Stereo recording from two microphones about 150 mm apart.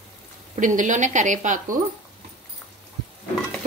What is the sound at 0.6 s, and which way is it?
A woman's voice, 60° right (ahead or behind).